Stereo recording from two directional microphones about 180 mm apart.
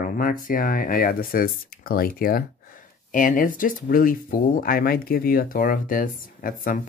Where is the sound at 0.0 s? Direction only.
50° left (ahead or behind).